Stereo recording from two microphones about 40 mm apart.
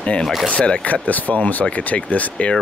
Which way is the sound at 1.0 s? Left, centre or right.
Left.